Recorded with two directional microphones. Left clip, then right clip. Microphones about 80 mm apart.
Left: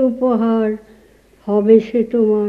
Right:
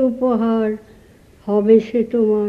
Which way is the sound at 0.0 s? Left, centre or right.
Right.